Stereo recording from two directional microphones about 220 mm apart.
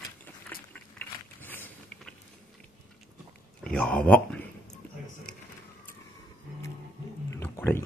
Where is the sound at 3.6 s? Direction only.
5° left (ahead or behind).